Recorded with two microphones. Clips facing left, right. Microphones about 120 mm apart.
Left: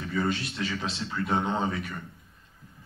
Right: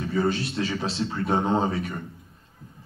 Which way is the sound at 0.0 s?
30° right (ahead or behind).